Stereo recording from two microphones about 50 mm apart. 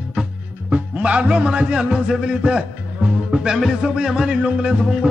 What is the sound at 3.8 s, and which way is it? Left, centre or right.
Music, centre.